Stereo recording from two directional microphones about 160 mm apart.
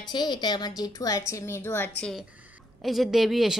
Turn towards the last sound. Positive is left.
turn(degrees=0)  # may be behind; listen again after turning